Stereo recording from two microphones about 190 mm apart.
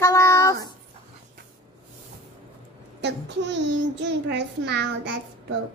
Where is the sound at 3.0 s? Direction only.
70° right (ahead or behind).